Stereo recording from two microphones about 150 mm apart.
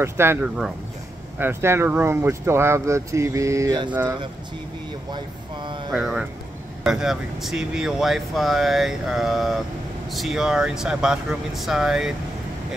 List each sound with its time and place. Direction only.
0.0 s speech: 15° right (ahead or behind)
5.9 s speech: 5° right (ahead or behind)